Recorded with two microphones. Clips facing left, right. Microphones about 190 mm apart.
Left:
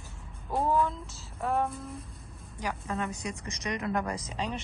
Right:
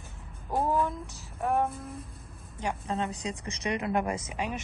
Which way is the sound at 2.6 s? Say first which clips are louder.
Right 2 dB; 30° right (ahead or behind).